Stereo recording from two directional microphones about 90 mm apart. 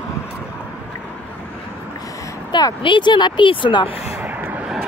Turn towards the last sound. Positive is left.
turn(degrees=-20)  # may be behind; listen again after turning